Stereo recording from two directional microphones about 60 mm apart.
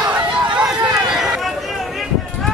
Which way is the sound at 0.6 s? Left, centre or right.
Centre.